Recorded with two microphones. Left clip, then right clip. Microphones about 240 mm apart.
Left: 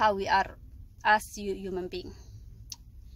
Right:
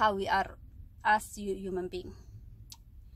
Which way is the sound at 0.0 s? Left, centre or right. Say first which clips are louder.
Left 3 dB; centre.